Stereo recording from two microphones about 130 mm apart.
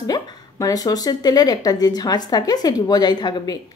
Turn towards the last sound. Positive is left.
turn(degrees=35)  # may be behind; listen again after turning